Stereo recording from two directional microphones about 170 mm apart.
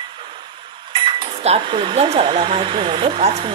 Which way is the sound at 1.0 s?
35° right (ahead or behind).